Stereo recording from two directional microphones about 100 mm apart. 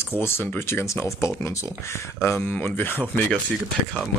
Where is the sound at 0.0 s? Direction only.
25° left (ahead or behind).